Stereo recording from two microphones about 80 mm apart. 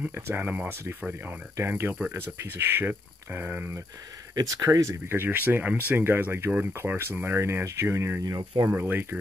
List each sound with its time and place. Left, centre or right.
0.1 s speech: right
4.4 s speech: right
8.2 s speech: right
8.6 s speech: right